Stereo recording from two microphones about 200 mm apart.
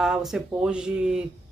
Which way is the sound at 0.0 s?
Centre (ahead or behind).